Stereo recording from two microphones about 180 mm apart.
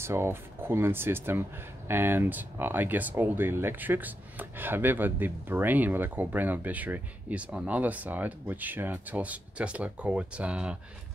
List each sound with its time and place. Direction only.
0.0 s speech: 15° right (ahead or behind)